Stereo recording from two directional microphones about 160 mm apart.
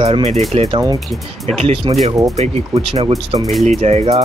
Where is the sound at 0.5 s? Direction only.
30° right (ahead or behind).